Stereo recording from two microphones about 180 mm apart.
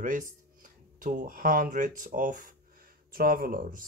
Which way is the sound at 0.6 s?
45° right (ahead or behind).